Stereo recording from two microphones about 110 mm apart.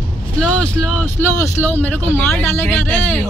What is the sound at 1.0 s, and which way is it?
Speech, 15° left (ahead or behind).